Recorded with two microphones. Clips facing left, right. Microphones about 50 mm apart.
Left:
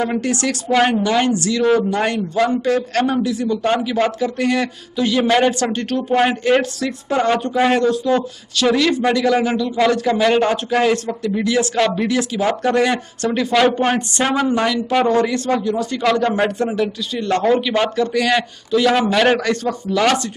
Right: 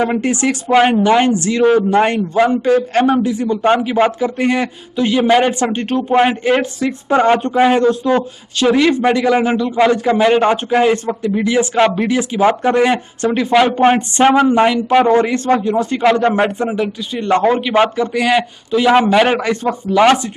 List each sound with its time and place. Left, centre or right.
0.0 s speech: right